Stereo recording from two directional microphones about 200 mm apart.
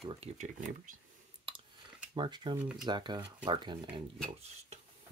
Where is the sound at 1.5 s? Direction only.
25° right (ahead or behind).